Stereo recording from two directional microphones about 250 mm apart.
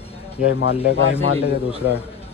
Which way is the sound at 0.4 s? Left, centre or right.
Left.